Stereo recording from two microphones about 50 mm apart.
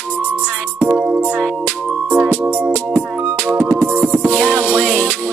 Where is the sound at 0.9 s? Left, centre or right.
Centre.